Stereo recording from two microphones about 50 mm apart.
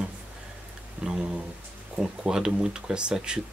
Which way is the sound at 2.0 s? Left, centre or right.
Centre.